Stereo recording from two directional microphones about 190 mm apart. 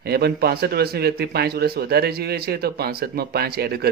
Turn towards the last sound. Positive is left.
turn(degrees=-55)  # may be behind; listen again after turning